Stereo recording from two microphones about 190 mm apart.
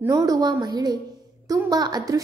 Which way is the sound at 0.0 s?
15° right (ahead or behind).